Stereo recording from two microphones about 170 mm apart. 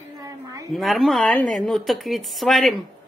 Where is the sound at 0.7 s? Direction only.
Centre (ahead or behind).